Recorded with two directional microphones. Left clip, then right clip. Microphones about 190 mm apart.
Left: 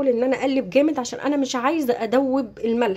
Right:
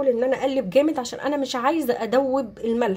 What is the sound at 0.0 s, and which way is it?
Speech, 15° left (ahead or behind).